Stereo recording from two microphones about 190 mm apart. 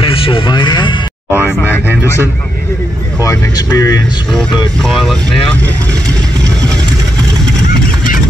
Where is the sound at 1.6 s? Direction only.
10° left (ahead or behind).